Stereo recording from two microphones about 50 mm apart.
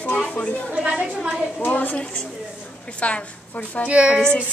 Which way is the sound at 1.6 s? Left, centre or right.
Left.